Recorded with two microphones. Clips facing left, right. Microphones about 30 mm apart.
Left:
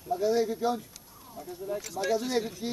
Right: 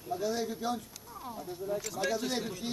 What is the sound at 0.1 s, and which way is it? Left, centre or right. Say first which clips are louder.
Speech: left 7 dB; centre.